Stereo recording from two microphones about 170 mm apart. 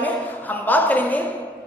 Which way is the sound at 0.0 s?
10° left (ahead or behind).